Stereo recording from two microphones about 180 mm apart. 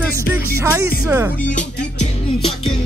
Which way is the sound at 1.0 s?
10° right (ahead or behind).